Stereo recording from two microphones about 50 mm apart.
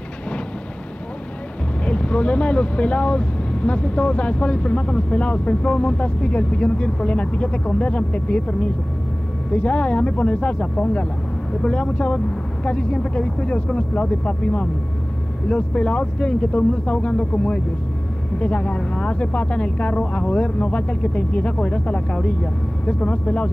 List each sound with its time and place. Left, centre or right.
1.9 s speech: left